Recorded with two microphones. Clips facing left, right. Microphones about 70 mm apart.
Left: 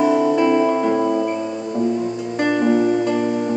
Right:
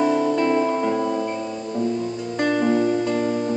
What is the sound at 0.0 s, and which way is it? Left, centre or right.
Music, centre.